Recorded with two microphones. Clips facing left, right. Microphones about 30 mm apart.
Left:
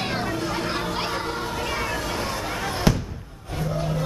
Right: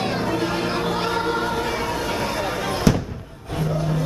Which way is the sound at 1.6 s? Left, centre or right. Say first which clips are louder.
Right 3 dB; centre.